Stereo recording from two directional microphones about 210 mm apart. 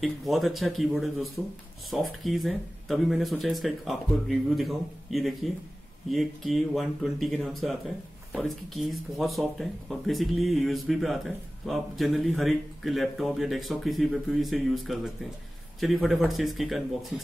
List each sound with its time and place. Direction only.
0.0 s speech: centre (ahead or behind)